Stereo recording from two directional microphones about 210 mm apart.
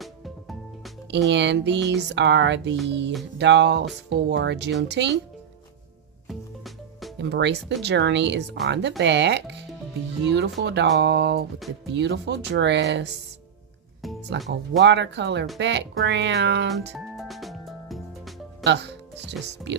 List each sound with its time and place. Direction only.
0.0 s music: centre (ahead or behind)
1.1 s music: 55° right (ahead or behind)
6.2 s music: centre (ahead or behind)
7.2 s music: 55° right (ahead or behind)
14.0 s music: centre (ahead or behind)
14.8 s music: 55° right (ahead or behind)
17.2 s music: centre (ahead or behind)
18.6 s speech: 55° right (ahead or behind)